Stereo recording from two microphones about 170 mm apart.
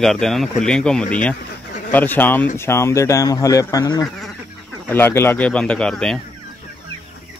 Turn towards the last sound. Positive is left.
turn(degrees=5)  # may be behind; listen again after turning